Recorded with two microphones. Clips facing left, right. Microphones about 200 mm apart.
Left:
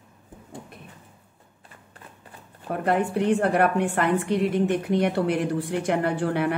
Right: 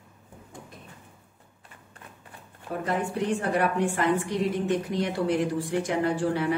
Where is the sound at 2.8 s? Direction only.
60° left (ahead or behind).